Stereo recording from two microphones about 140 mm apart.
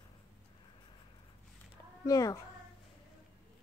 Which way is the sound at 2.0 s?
25° left (ahead or behind).